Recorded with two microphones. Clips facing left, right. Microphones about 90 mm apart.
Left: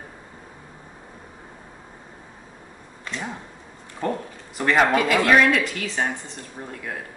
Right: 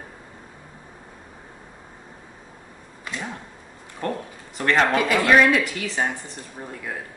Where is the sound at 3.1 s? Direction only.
10° right (ahead or behind).